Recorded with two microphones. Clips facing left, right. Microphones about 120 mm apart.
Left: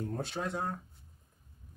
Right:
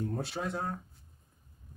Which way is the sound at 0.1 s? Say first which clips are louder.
Right 1 dB; 5° right (ahead or behind).